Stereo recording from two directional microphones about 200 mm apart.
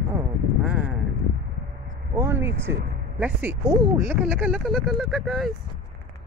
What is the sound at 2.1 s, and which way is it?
Speech, 10° right (ahead or behind).